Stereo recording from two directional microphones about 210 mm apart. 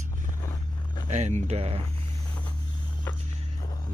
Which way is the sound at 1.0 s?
35° right (ahead or behind).